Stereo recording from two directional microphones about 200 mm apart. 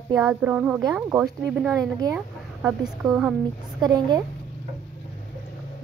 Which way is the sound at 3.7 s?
20° right (ahead or behind).